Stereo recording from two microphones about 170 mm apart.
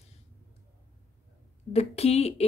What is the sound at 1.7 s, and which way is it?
Speech, 35° left (ahead or behind).